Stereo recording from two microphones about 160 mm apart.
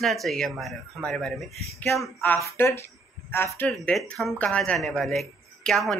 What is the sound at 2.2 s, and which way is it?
Music, 15° left (ahead or behind).